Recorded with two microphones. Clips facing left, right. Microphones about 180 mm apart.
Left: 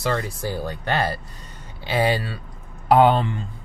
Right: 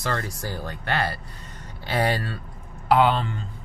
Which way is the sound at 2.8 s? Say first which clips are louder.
Left 4 dB; 45° left (ahead or behind).